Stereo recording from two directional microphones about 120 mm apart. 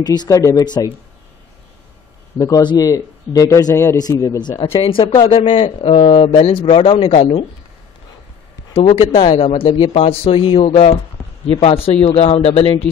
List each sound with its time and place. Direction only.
0.0 s speech: 35° left (ahead or behind)
2.3 s a man's voice: 30° left (ahead or behind)
4.6 s speech: 50° left (ahead or behind)
8.7 s speech: 55° left (ahead or behind)